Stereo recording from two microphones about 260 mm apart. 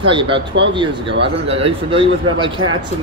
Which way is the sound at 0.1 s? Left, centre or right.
Centre.